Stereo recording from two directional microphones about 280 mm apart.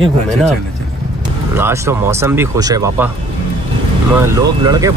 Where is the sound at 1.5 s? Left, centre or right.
Centre.